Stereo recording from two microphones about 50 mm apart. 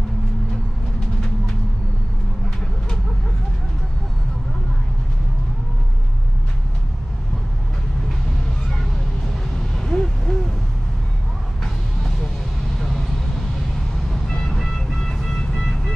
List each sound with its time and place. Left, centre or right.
9.6 s a sound: centre
12.7 s vehicle: centre
14.5 s vehicle: centre